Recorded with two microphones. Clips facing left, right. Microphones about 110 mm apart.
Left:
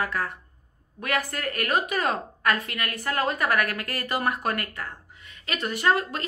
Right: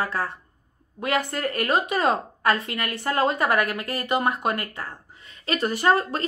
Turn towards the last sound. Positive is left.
turn(degrees=-35)  # may be behind; listen again after turning